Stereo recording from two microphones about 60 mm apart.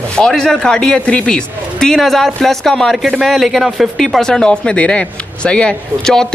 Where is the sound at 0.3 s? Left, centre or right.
Centre.